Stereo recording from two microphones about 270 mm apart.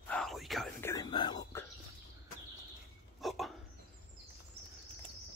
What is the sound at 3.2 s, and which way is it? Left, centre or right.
Dog, centre.